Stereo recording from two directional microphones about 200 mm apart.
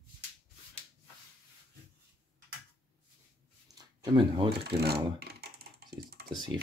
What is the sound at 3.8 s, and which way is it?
Speech, 20° right (ahead or behind).